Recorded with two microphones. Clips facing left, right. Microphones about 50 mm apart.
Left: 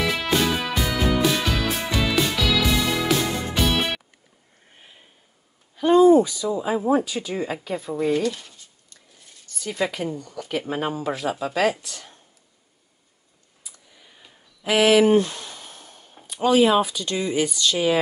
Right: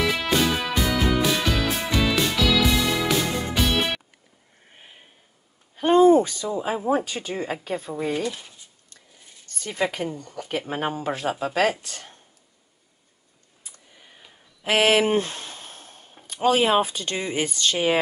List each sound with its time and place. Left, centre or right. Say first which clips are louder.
0.0 s music: even; centre
5.8 s a sound: left 1 dB; right
7.2 s speech: left 2 dB; right
7.9 s speech: left 6 dB; centre
10.1 s speech: left 1 dB; right
10.7 s speech: left 1 dB; right
11.0 s speech: even; right
14.6 s a sound: left 3 dB; right
16.3 s speech: left 2 dB; right